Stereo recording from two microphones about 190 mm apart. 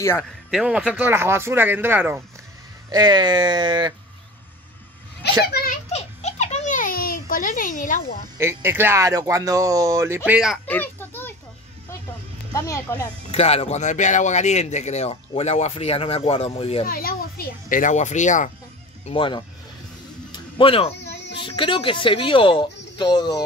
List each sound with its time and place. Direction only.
0.2 s speech: centre (ahead or behind)
2.9 s speech: 20° right (ahead or behind)
5.5 s a child's voice: 50° left (ahead or behind)
5.9 s baby laughter: 35° left (ahead or behind)
8.4 s speech: 15° right (ahead or behind)
10.7 s a sound: 10° left (ahead or behind)
12.5 s speech: 15° left (ahead or behind)
13.3 s speech: 30° left (ahead or behind)
16.8 s speech: 50° left (ahead or behind)
19.0 s speech: 25° left (ahead or behind)
20.2 s music: 25° left (ahead or behind)
21.0 s a sound: 60° left (ahead or behind)
21.4 s speech: 25° left (ahead or behind)